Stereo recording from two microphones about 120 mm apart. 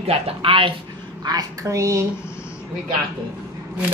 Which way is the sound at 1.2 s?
35° right (ahead or behind).